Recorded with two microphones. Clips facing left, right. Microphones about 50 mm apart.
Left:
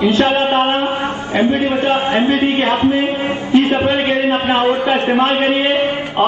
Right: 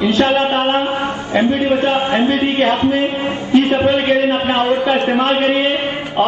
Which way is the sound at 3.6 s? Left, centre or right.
Centre.